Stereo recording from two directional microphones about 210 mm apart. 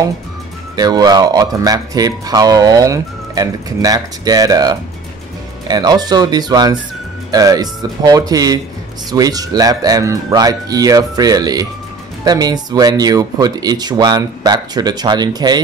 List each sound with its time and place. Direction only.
0.7 s speech: 20° right (ahead or behind)